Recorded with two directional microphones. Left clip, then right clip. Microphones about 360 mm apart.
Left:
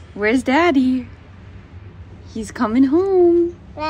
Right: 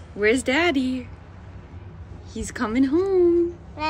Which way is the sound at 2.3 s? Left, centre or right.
Centre.